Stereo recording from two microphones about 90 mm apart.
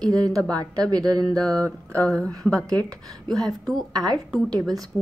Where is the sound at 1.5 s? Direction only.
35° right (ahead or behind).